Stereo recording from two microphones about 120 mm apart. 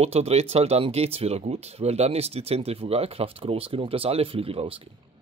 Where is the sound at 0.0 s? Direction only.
60° right (ahead or behind).